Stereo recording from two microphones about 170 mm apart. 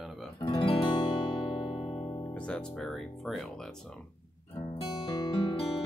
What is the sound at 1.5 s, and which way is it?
Music, 35° left (ahead or behind).